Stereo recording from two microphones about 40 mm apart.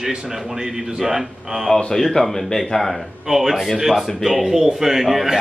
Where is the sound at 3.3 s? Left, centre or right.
Centre.